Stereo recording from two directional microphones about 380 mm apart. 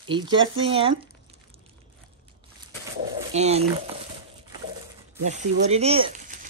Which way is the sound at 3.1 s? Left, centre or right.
Centre.